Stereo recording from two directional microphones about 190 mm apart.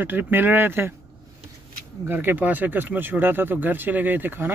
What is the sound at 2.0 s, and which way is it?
Speech, 10° right (ahead or behind).